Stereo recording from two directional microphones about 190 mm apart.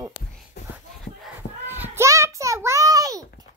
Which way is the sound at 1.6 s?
10° right (ahead or behind).